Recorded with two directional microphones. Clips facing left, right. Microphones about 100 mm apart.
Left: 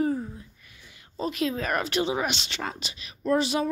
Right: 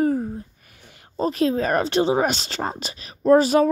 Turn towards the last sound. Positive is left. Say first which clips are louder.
# right 9 dB
turn(degrees=-45)  # may be behind; listen again after turning